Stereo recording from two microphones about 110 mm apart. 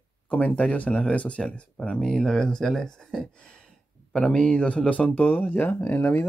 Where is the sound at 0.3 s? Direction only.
10° left (ahead or behind).